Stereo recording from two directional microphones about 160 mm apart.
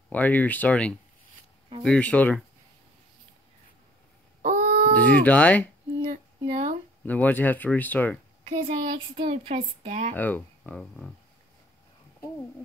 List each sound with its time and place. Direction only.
0.1 s speech: 10° left (ahead or behind)
4.4 s a sound: 50° right (ahead or behind)
4.9 s speech: 10° left (ahead or behind)
6.4 s speech: 45° right (ahead or behind)
7.1 s speech: 10° left (ahead or behind)
8.5 s speech: 50° right (ahead or behind)
9.1 s speech: 35° right (ahead or behind)
10.1 s speech: 10° left (ahead or behind)